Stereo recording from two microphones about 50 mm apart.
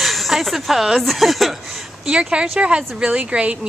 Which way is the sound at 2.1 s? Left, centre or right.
Centre.